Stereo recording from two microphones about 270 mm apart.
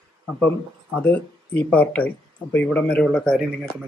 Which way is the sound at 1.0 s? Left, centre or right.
Centre.